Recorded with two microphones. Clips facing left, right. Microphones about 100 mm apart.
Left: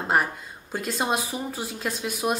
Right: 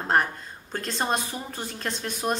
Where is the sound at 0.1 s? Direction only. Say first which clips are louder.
Right 1 dB; 5° left (ahead or behind).